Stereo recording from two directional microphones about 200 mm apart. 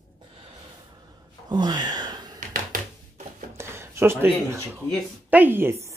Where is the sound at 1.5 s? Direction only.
20° right (ahead or behind).